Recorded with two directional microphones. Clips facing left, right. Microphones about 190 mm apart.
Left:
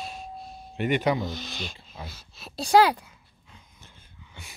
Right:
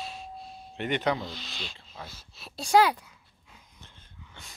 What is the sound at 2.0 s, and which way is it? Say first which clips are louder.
Speech: left 3 dB; 60° left (ahead or behind).